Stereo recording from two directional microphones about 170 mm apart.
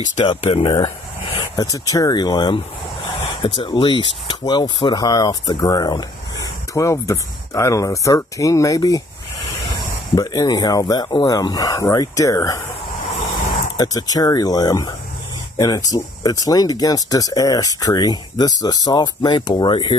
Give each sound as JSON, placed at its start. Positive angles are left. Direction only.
{"t": 0.1, "sound": "speech", "side_deg": 35}
{"t": 13.7, "sound": "speech", "side_deg": 20}